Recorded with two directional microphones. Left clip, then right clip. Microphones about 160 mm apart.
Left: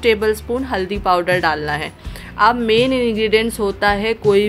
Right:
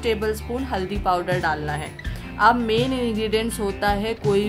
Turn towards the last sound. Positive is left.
turn(degrees=15)  # may be behind; listen again after turning